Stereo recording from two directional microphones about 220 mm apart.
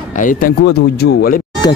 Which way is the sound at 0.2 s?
40° left (ahead or behind).